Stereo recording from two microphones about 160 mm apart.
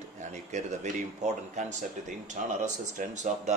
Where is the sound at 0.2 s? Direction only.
50° right (ahead or behind).